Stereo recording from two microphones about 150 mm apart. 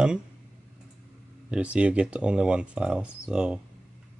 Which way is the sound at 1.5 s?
5° right (ahead or behind).